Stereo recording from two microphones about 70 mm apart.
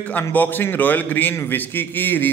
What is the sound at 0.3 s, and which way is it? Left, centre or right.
A man's voice, left.